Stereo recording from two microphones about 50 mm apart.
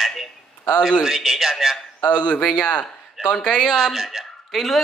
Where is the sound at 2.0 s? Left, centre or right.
Left.